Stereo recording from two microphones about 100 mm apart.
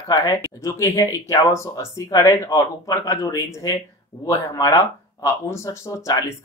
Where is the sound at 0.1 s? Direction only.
35° left (ahead or behind).